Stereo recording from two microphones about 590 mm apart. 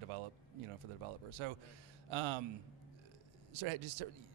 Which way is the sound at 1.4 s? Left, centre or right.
Right.